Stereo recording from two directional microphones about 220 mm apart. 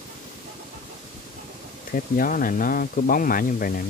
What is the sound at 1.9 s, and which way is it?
Speech, 40° left (ahead or behind).